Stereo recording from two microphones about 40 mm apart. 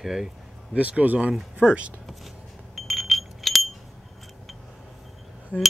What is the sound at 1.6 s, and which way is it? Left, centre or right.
Speech, centre.